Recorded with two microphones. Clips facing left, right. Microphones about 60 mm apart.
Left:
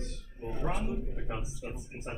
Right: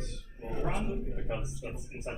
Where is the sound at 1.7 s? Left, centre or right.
Centre.